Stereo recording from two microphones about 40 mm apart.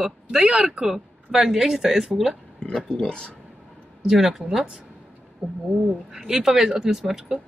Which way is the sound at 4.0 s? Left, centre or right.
Centre.